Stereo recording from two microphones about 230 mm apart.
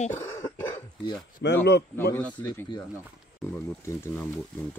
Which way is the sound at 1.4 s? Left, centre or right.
Left.